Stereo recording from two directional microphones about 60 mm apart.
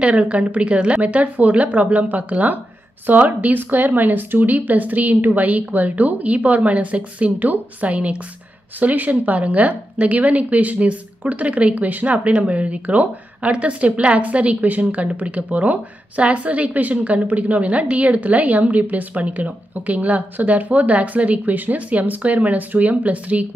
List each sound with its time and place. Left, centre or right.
0.0 s speech: right